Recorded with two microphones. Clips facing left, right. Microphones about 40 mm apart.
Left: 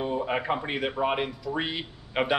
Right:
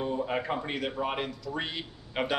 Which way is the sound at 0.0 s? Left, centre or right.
Left.